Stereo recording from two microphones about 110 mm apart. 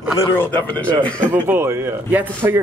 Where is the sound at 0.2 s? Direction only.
20° left (ahead or behind).